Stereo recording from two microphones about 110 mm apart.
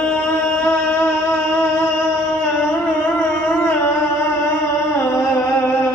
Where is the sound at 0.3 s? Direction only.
20° left (ahead or behind).